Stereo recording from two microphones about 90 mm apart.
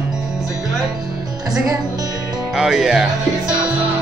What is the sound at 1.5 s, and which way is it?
Speech, 45° right (ahead or behind).